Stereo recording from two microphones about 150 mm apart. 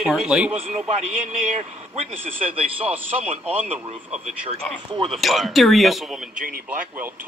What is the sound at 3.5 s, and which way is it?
Speech, 10° right (ahead or behind).